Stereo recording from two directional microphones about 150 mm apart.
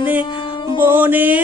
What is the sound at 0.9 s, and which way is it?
Music, 15° right (ahead or behind).